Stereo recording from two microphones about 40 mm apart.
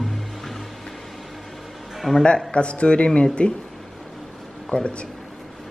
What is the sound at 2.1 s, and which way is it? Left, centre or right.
Music, centre.